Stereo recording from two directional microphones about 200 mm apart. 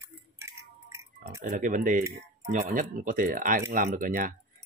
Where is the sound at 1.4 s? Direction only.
40° right (ahead or behind).